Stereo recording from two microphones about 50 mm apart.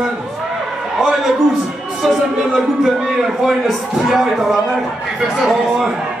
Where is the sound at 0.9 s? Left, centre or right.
Centre.